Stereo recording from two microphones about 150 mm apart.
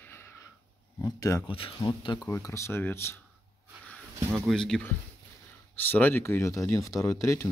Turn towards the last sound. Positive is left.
turn(degrees=20)  # may be behind; listen again after turning